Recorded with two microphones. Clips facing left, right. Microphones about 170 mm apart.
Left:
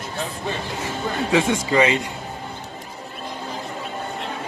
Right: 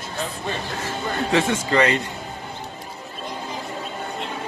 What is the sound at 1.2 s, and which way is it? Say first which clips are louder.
Speech: left 1 dB; 10° left (ahead or behind).